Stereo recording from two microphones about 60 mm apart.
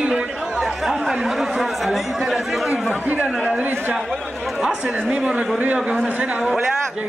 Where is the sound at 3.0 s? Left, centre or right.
Right.